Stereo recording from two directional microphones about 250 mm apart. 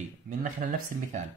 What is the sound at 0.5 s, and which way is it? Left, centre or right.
Speech, right.